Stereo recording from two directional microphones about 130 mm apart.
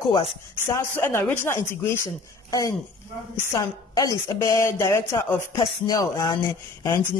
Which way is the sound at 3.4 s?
25° left (ahead or behind).